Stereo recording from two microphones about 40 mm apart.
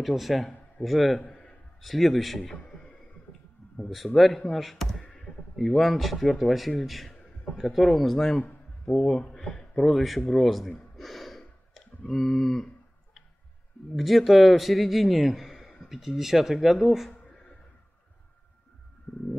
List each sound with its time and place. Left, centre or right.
0.0 s a man's voice: centre
2.5 s music: left
3.9 s a man's voice: centre
9.1 s speech: left
9.5 s a sound: centre
9.8 s a man's voice: centre
11.0 s a sound: centre
13.9 s a man's voice: centre